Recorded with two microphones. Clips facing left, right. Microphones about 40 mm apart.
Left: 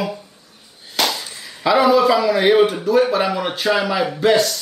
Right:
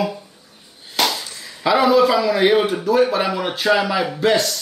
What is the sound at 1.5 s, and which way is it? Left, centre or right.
A man's voice, centre.